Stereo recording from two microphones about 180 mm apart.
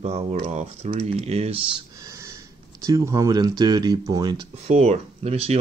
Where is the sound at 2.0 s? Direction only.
20° right (ahead or behind).